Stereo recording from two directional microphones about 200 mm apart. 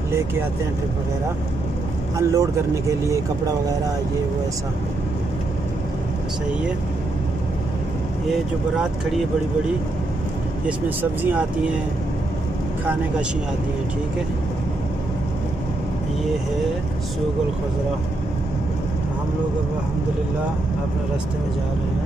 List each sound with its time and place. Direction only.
2.1 s speech: 15° right (ahead or behind)
8.3 s speech: centre (ahead or behind)
11.0 s speech: 10° right (ahead or behind)